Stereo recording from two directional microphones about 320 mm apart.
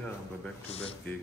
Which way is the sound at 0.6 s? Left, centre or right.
Centre.